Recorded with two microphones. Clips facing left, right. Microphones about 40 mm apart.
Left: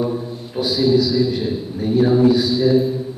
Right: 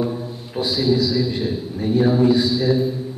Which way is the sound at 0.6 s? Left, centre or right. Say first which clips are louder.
Left 3 dB; centre.